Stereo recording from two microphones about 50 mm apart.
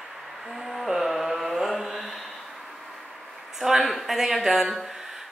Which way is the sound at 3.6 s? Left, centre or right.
Centre.